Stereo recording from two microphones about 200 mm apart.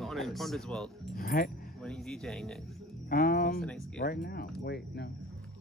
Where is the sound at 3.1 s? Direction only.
45° left (ahead or behind).